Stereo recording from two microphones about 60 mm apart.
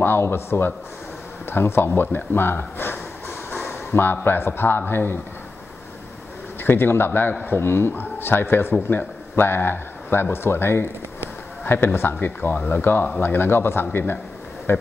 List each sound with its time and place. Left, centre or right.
0.0 s a man's voice: left
6.6 s a man's voice: left